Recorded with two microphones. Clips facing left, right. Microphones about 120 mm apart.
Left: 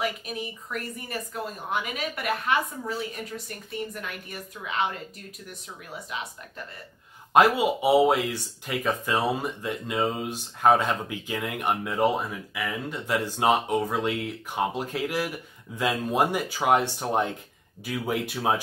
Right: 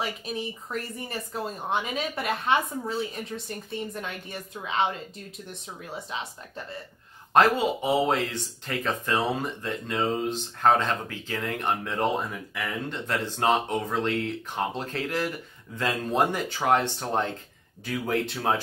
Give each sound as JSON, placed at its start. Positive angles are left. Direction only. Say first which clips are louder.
{"t": 0.0, "sound": "speech", "louder": "left 1 dB", "side_deg": -30}
{"t": 6.1, "sound": "speech", "louder": "even", "side_deg": -30}
{"t": 7.3, "sound": "speech", "louder": "left 1 dB", "side_deg": 10}